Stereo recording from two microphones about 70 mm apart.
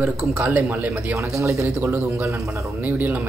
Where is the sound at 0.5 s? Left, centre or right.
Right.